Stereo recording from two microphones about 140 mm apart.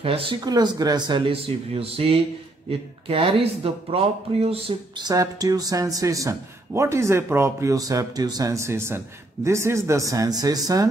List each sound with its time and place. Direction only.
0.0 s speech: 40° right (ahead or behind)
0.5 s speech: 30° right (ahead or behind); by 4.7 s 45° right (ahead or behind)
4.9 s speech: 25° right (ahead or behind)